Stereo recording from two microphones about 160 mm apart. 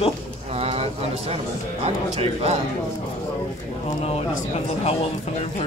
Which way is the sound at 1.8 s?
40° right (ahead or behind).